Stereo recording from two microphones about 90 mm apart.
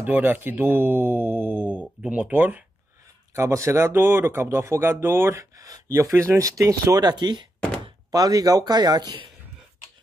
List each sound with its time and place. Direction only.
0.0 s speech: 20° right (ahead or behind)
3.3 s speech: 35° right (ahead or behind)
7.0 s speech: 50° right (ahead or behind)
8.1 s speech: 40° right (ahead or behind)